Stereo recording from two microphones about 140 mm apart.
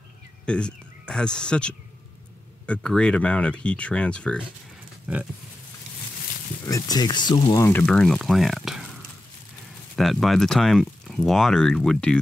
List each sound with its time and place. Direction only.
0.5 s speech: 5° left (ahead or behind)
5.0 s pig: 10° right (ahead or behind)
6.6 s speech: 25° left (ahead or behind)
7.7 s speech: 5° left (ahead or behind)